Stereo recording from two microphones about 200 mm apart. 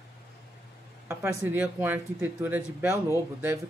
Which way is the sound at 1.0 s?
10° right (ahead or behind).